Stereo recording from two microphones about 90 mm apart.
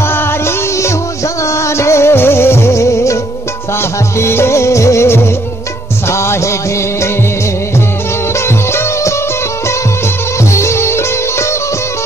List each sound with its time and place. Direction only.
1.5 s music: 30° left (ahead or behind)
4.2 s music: 30° left (ahead or behind)
8.5 s music: 30° left (ahead or behind)
10.5 s music: 30° left (ahead or behind)